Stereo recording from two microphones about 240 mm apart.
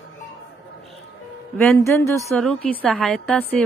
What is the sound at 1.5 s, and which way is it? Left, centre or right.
A woman's voice, centre.